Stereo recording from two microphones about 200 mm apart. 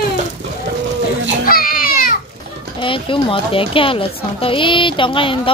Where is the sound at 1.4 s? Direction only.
45° left (ahead or behind).